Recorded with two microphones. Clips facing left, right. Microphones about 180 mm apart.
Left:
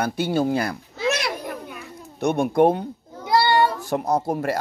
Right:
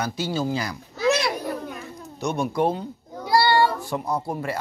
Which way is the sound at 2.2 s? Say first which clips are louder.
Left 6 dB; 55° left (ahead or behind).